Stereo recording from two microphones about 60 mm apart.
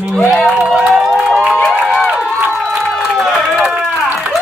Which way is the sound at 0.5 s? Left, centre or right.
Centre.